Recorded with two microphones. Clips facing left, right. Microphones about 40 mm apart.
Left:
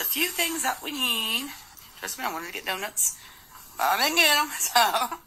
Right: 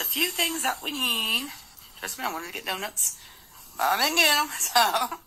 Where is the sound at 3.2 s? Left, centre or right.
Left.